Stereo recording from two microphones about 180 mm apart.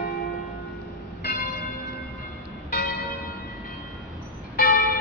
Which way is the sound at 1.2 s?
55° left (ahead or behind).